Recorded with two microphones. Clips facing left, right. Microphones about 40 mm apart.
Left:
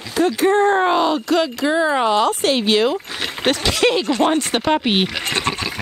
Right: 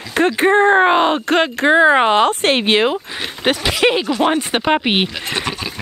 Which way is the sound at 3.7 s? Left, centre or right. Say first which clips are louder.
Right 1 dB; right.